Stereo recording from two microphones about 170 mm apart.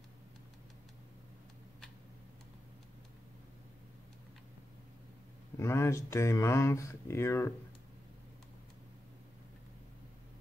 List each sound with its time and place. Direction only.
5.6 s speech: 15° left (ahead or behind)